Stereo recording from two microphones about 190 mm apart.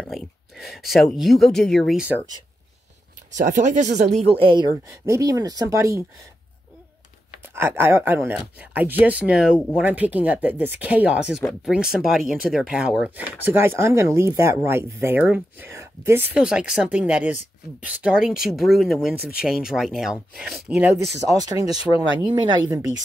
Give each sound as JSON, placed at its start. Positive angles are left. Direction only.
{"t": 0.0, "sound": "speech", "side_deg": 0}
{"t": 3.3, "sound": "speech", "side_deg": -40}
{"t": 7.5, "sound": "speech", "side_deg": -10}
{"t": 21.4, "sound": "speech", "side_deg": -20}